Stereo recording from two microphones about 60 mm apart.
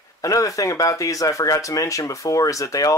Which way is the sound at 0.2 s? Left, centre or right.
Left.